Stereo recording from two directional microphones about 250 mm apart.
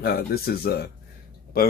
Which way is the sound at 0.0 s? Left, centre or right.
Left.